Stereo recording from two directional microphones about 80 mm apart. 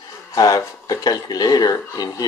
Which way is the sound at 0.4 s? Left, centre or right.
Left.